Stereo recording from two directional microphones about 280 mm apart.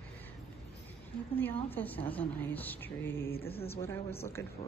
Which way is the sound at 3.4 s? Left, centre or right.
Left.